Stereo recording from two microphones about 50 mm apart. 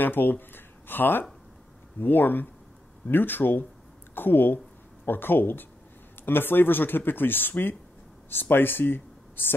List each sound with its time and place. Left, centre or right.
0.0 s speech: left